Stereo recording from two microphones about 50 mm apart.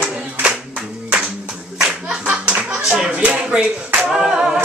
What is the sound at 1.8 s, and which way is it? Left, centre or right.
Clapping, centre.